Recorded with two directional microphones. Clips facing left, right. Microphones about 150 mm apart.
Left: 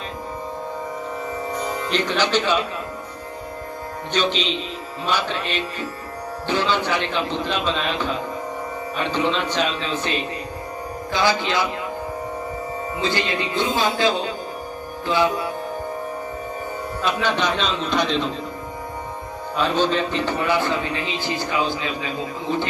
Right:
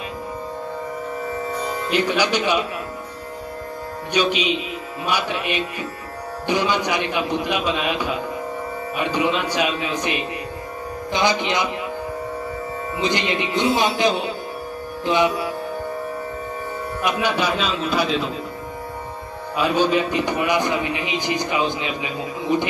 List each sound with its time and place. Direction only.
1.9 s speech: 10° right (ahead or behind)
4.1 s speech: 10° right (ahead or behind)
13.0 s speech: 20° right (ahead or behind)
17.0 s speech: 10° right (ahead or behind)
19.5 s speech: 10° right (ahead or behind)